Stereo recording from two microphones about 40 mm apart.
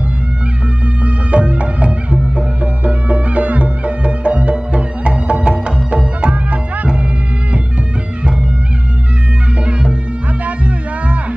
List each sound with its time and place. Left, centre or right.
1.0 s music: right
10.4 s music: right